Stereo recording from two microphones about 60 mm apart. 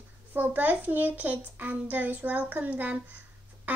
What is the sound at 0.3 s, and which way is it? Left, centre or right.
A child's voice, right.